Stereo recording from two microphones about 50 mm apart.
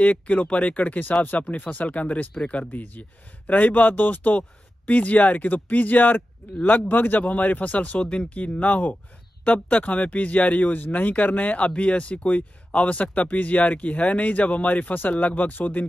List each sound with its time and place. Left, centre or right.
0.0 s speech: left
8.0 s speech: left
8.5 s speech: left